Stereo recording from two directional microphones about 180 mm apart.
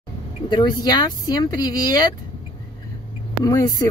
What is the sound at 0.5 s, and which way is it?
Speech, 25° left (ahead or behind).